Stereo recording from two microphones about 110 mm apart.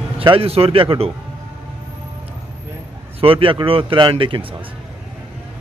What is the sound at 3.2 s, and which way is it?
Speech, 55° right (ahead or behind).